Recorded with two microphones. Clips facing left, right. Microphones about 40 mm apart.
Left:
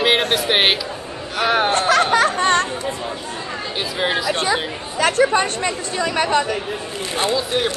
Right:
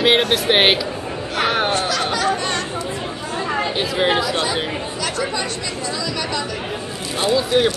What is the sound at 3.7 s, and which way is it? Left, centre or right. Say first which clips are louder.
Speech: right 1 dB; centre.